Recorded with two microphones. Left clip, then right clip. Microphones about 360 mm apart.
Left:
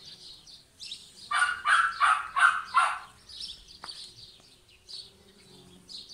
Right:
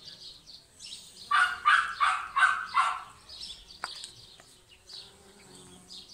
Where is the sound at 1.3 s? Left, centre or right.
Centre.